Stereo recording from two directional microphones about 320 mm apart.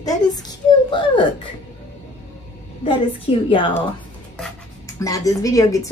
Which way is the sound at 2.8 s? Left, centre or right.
Centre.